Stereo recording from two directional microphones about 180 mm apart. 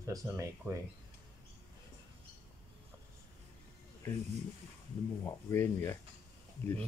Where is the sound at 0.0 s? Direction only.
15° right (ahead or behind).